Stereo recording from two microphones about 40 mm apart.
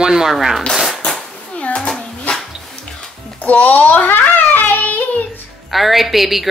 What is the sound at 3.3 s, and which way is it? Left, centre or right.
Child singing, left.